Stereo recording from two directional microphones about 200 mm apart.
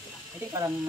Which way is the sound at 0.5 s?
15° right (ahead or behind).